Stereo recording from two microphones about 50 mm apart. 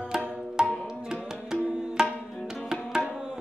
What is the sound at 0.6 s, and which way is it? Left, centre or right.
Tabla, centre.